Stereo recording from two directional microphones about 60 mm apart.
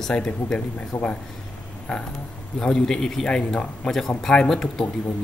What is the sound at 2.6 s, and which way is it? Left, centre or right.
A man's voice, centre.